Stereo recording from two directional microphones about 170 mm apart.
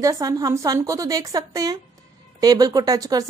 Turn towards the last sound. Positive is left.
turn(degrees=-20)  # may be behind; listen again after turning